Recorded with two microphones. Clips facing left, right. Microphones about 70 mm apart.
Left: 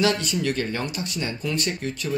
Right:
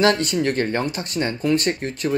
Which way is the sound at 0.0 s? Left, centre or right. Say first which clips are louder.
Right 4 dB; right.